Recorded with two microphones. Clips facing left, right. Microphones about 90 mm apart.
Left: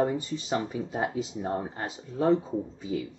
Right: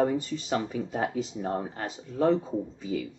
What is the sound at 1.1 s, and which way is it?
Speech, 5° left (ahead or behind).